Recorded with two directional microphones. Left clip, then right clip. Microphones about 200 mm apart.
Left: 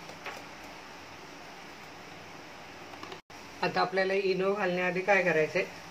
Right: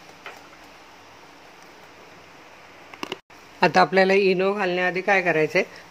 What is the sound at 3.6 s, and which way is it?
Speech, 50° right (ahead or behind).